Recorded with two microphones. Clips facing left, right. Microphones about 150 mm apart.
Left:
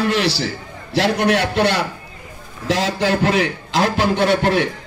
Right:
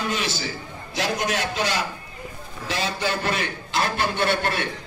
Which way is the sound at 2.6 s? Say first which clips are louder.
Left 8 dB; 90° left.